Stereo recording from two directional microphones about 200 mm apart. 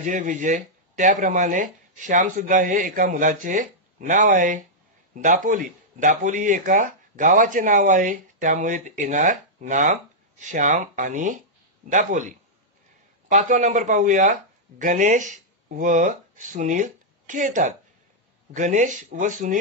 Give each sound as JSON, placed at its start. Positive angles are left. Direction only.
{"t": 0.0, "sound": "speech", "side_deg": -40}